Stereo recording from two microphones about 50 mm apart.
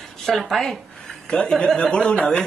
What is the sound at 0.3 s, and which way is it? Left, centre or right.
Speech, centre.